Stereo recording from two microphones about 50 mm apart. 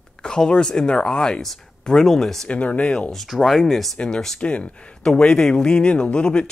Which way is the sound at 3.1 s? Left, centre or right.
Centre.